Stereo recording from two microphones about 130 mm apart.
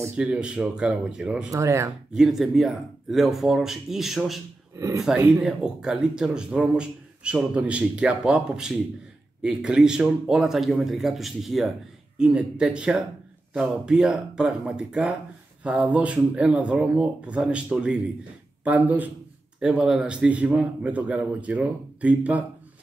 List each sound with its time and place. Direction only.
0.0 s a man's voice: 10° right (ahead or behind)
1.5 s speech: 25° right (ahead or behind)
2.1 s a man's voice: 5° right (ahead or behind)
4.7 s speech: 25° right (ahead or behind)
5.3 s a man's voice: 5° right (ahead or behind)